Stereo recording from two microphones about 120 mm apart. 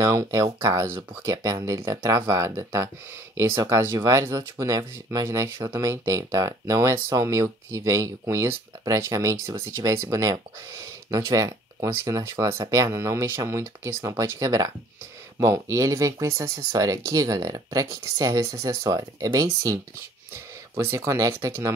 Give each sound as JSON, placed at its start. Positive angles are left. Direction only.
{"t": 0.0, "sound": "speech", "side_deg": -25}